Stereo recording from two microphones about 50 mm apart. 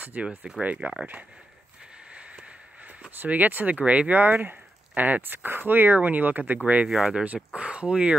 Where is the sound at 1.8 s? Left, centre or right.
Right.